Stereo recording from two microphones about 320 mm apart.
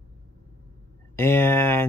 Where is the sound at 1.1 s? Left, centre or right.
Centre.